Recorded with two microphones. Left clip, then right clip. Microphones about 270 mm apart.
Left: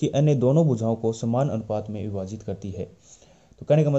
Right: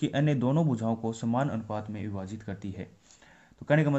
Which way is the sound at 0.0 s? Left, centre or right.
Centre.